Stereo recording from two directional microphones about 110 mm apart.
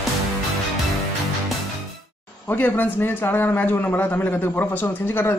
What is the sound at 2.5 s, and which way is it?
A man's voice, 15° left (ahead or behind).